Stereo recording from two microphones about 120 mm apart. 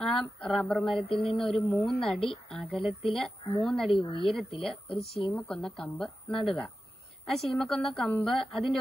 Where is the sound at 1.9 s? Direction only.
5° left (ahead or behind).